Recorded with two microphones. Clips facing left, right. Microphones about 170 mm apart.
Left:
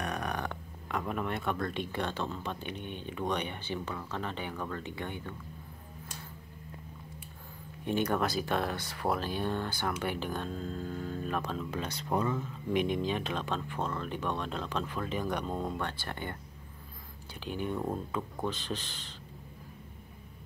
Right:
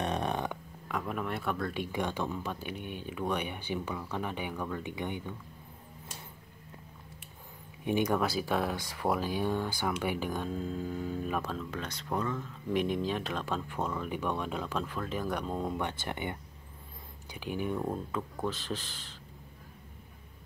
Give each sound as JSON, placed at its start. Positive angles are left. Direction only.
{"t": 0.0, "sound": "purr", "side_deg": -25}
{"t": 0.5, "sound": "speech", "side_deg": 0}
{"t": 7.8, "sound": "speech", "side_deg": -10}
{"t": 11.7, "sound": "speech", "side_deg": 10}
{"t": 15.8, "sound": "speech", "side_deg": -20}